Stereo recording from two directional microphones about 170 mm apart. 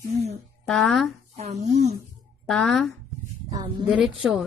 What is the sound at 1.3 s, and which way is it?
Speech, 40° right (ahead or behind).